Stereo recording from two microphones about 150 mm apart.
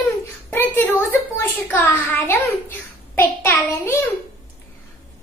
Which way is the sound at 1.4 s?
10° left (ahead or behind).